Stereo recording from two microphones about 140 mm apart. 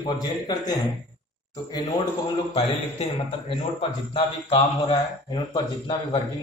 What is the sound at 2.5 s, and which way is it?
A man's voice, 45° left (ahead or behind).